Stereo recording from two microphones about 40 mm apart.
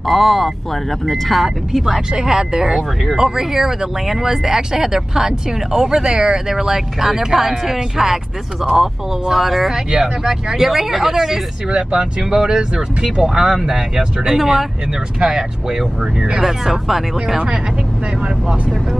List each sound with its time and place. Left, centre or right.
0.0 s speech: centre
1.4 s speech: centre
9.3 s speech: centre
16.3 s speech: centre